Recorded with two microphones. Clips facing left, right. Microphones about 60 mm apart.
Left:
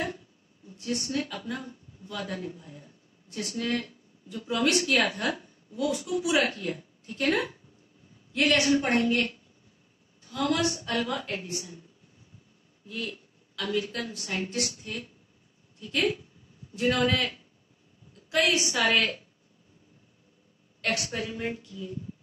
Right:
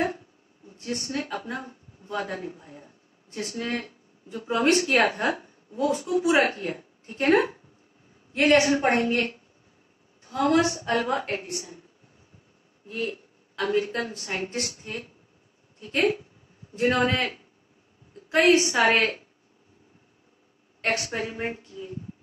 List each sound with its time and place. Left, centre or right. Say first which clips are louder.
0.7 s a woman's voice: even; right
12.8 s a woman's voice: right 5 dB; right
20.8 s a woman's voice: right 3 dB; right